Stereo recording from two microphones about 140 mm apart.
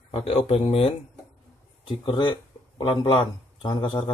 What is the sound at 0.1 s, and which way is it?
Speech, 45° left (ahead or behind).